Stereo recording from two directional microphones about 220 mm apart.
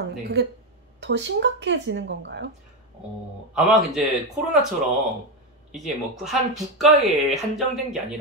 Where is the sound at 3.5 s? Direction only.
Centre (ahead or behind).